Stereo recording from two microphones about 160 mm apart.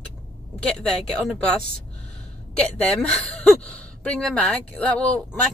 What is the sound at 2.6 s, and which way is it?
A woman's voice, 5° left (ahead or behind).